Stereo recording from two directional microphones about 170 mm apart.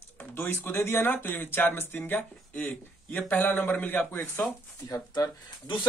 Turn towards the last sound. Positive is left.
turn(degrees=25)  # may be behind; listen again after turning